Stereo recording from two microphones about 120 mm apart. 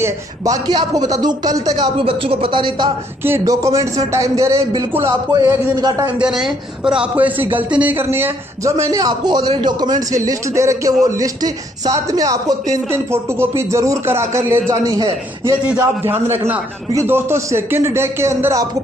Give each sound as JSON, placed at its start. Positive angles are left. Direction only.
{"t": 0.0, "sound": "speech", "side_deg": -30}
{"t": 2.0, "sound": "speech", "side_deg": -50}
{"t": 3.3, "sound": "a man's voice", "side_deg": -25}
{"t": 5.8, "sound": "speech", "side_deg": -35}
{"t": 6.1, "sound": "a man's voice", "side_deg": -5}
{"t": 15.6, "sound": "a man's voice", "side_deg": -15}